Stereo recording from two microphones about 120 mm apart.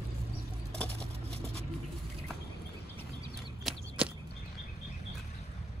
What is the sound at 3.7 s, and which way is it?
Chop, centre (ahead or behind).